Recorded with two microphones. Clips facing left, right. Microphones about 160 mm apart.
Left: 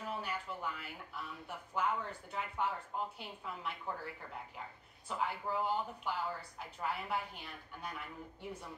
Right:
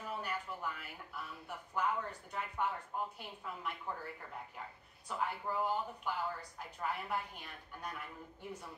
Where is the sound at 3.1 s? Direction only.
Centre (ahead or behind).